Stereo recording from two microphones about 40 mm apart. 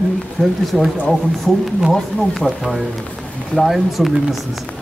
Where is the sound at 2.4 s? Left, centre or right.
Centre.